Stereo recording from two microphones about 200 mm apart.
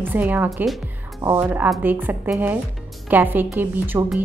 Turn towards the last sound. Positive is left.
turn(degrees=-10)  # may be behind; listen again after turning